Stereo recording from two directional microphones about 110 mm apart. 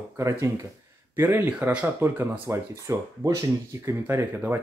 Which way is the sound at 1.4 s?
10° right (ahead or behind).